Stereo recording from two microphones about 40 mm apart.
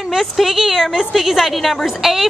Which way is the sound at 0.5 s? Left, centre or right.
Centre.